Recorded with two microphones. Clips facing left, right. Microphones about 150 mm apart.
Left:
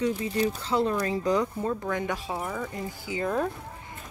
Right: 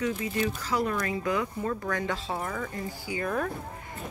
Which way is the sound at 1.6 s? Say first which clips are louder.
Left 1 dB; 15° left (ahead or behind).